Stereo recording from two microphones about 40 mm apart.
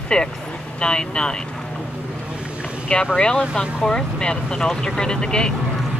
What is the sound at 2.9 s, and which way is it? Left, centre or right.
Speech, left.